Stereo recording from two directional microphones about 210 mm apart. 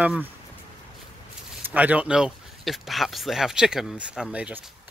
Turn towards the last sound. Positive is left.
turn(degrees=-5)  # may be behind; listen again after turning